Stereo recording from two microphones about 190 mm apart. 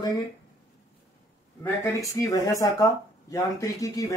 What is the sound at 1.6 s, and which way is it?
Speech, 15° left (ahead or behind).